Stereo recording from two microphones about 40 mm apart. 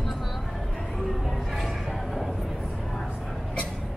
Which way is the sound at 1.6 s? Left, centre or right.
Centre.